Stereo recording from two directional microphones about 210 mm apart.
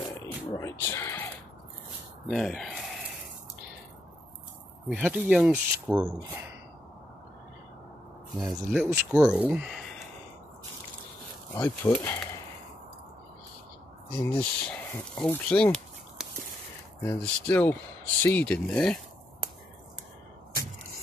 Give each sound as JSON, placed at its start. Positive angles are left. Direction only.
{"t": 0.1, "sound": "a sound", "side_deg": 15}
{"t": 2.2, "sound": "speech", "side_deg": 0}
{"t": 4.8, "sound": "speech", "side_deg": -5}
{"t": 8.7, "sound": "speech", "side_deg": -5}
{"t": 11.5, "sound": "speech", "side_deg": 10}
{"t": 14.1, "sound": "speech", "side_deg": 5}